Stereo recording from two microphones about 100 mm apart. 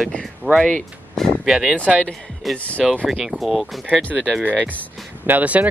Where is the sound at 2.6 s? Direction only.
15° left (ahead or behind).